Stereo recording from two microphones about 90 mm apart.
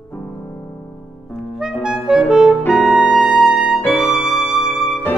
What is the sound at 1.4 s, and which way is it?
Clarinet, 5° right (ahead or behind).